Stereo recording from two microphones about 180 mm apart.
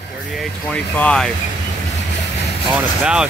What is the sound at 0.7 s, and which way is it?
Speech, 5° left (ahead or behind).